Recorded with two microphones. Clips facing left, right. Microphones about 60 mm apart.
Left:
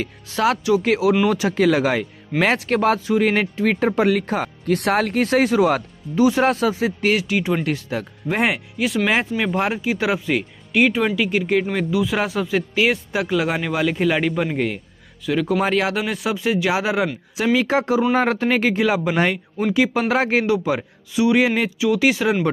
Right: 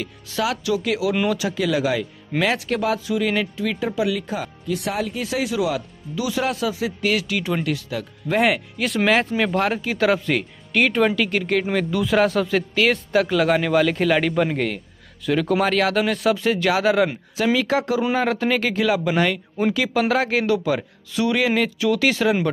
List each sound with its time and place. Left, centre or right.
0.0 s a man's voice: left; by 15.5 s centre
15.6 s speech: centre
17.6 s a man's voice: left